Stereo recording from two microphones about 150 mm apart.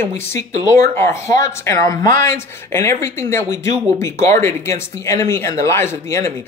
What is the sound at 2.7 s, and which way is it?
Speech, 20° left (ahead or behind).